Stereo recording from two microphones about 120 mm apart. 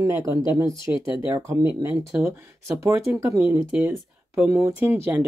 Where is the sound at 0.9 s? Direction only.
20° right (ahead or behind).